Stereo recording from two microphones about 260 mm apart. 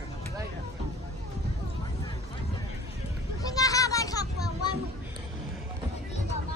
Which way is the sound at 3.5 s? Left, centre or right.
Centre.